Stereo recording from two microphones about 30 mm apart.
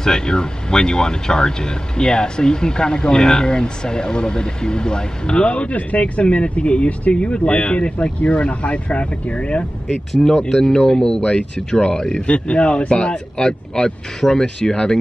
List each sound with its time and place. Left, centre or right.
0.0 s speech: left
5.3 s speech: left
10.2 s speech: centre
11.1 s speech: left
12.3 s speech: left
12.9 s speech: left